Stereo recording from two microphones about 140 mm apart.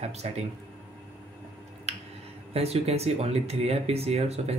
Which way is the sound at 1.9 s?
50° right (ahead or behind).